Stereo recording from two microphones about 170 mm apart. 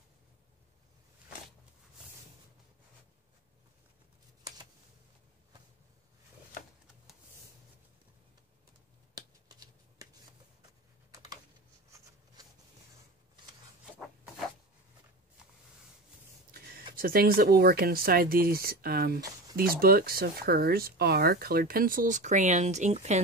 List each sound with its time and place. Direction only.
9.1 s shuffling cards: 25° right (ahead or behind)
16.5 s speech: 60° right (ahead or behind); by 23.2 s 40° right (ahead or behind)